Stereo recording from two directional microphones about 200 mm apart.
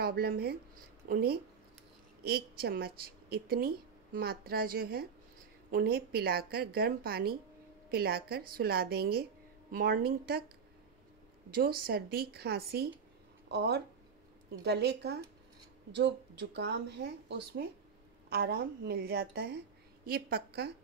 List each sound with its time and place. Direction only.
0.0 s a woman's voice: 50° right (ahead or behind)
11.5 s a woman's voice: 50° right (ahead or behind)